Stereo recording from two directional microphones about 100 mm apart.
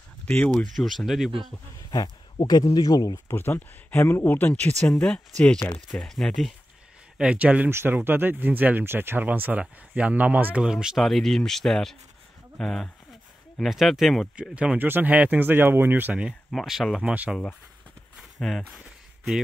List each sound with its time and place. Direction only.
0.2 s speech: 15° left (ahead or behind)
0.7 s speech: centre (ahead or behind)
1.8 s speech: 40° left (ahead or behind)
3.3 s speech: 20° left (ahead or behind); by 6.5 s centre (ahead or behind)
7.2 s speech: 10° right (ahead or behind)
14.5 s speech: 15° right (ahead or behind)
16.5 s speech: centre (ahead or behind)
18.1 s a sound: 5° left (ahead or behind)